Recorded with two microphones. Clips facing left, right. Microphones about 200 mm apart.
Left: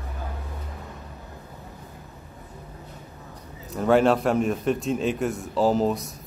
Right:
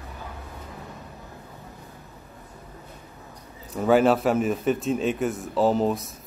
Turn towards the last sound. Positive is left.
turn(degrees=0)  # may be behind; listen again after turning